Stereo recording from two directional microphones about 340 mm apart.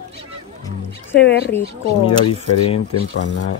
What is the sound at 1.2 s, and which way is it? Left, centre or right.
Speech, left.